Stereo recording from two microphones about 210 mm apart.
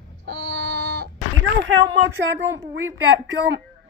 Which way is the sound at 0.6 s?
45° right (ahead or behind).